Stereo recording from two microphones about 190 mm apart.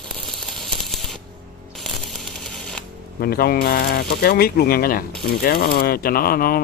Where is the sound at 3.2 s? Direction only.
55° left (ahead or behind).